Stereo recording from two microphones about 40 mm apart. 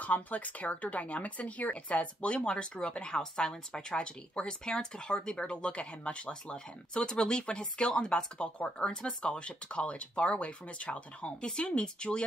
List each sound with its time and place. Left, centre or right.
0.0 s speech: left